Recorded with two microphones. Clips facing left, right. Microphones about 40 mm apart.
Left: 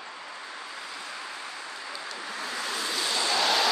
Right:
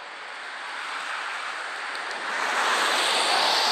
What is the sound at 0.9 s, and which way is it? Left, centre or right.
Vehicle, right.